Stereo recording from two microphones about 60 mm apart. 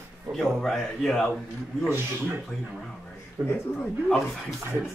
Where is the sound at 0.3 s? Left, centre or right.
Centre.